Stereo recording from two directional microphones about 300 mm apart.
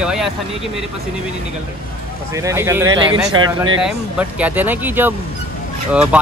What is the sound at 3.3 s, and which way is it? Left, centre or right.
Speech, right.